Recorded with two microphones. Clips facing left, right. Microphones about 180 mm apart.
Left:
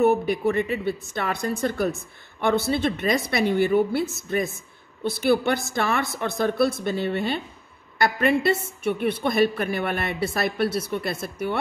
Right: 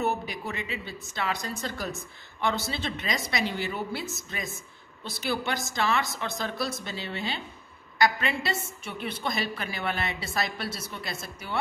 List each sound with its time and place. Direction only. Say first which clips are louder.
0.0 s a woman's voice: left 10 dB; 55° left (ahead or behind)